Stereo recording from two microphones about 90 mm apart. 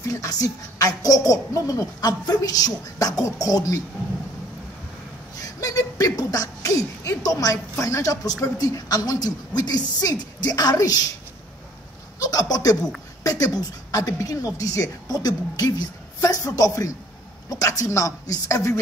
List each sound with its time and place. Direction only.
0.0 s a woman's voice: 40° left (ahead or behind)
5.4 s speech: 40° left (ahead or behind)
12.2 s a woman's voice: 45° left (ahead or behind)